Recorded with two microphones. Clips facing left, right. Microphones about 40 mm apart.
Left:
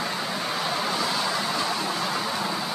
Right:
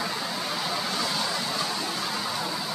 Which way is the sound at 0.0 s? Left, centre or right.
Centre.